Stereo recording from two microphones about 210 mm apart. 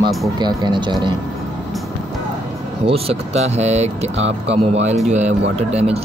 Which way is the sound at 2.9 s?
30° right (ahead or behind).